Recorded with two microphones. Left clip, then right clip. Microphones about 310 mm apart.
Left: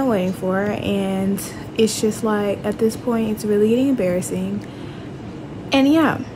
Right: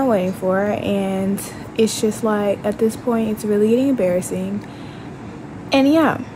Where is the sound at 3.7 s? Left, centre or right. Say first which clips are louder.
Right 2 dB; centre.